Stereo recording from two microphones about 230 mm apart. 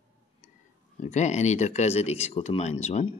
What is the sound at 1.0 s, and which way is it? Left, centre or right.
Speech, left.